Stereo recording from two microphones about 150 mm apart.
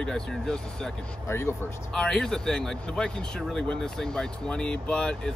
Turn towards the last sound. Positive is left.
turn(degrees=5)  # may be behind; listen again after turning